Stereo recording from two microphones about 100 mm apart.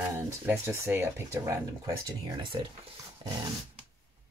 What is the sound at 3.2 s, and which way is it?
Dog, 55° right (ahead or behind).